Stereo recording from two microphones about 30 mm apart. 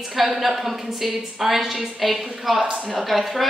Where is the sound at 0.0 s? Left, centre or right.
Centre.